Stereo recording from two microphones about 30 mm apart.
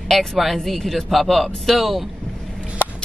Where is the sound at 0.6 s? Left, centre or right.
Centre.